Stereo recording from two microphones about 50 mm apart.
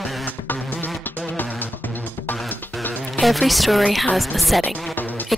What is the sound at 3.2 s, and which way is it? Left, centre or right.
Speech, centre.